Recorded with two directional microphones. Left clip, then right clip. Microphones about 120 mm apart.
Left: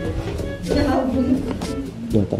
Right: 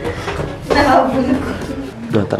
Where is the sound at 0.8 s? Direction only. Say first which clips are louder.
Right 9 dB; 20° right (ahead or behind).